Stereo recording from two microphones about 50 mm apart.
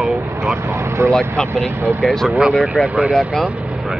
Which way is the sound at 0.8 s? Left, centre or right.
Right.